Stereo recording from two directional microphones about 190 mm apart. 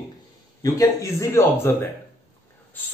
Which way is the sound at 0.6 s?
20° left (ahead or behind).